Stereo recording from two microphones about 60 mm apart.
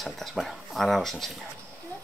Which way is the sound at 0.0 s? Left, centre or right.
Centre.